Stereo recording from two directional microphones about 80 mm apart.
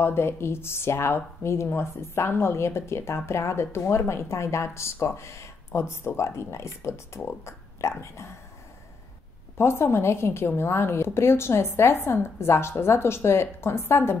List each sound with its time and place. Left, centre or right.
0.0 s a woman's voice: left
9.6 s a woman's voice: left